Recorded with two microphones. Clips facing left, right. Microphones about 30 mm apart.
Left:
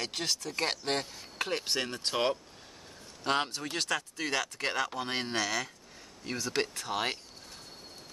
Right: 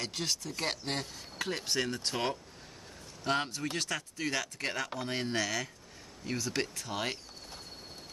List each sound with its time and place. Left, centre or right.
0.0 s speech: left
1.4 s speech: left
3.3 s speech: left
4.2 s speech: left
6.2 s speech: left